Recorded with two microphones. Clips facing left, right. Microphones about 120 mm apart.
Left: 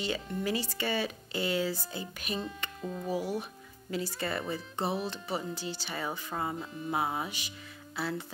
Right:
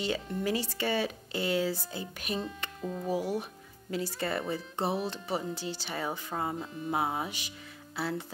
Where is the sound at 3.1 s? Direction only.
25° right (ahead or behind).